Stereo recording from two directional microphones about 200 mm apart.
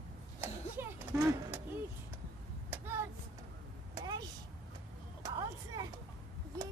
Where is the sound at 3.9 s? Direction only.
20° right (ahead or behind).